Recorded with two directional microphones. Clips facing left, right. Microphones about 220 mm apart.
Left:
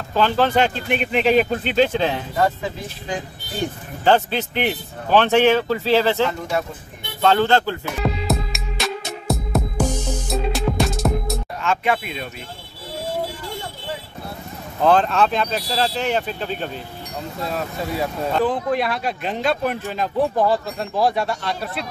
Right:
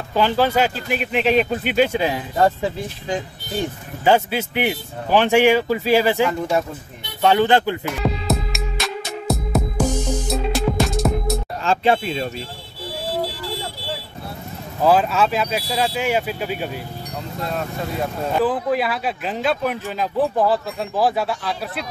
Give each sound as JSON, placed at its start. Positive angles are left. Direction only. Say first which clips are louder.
{"t": 0.1, "sound": "speech", "louder": "even", "side_deg": -10}
{"t": 1.6, "sound": "a man's voice", "louder": "even", "side_deg": -10}
{"t": 2.4, "sound": "speech", "louder": "right 4 dB", "side_deg": -35}
{"t": 4.0, "sound": "a man's voice", "louder": "even", "side_deg": -10}
{"t": 8.0, "sound": "music", "louder": "left 2 dB", "side_deg": 0}
{"t": 11.6, "sound": "speech", "louder": "right 3 dB", "side_deg": -30}
{"t": 14.8, "sound": "a man's voice", "louder": "even", "side_deg": -5}
{"t": 17.4, "sound": "speech", "louder": "even", "side_deg": 0}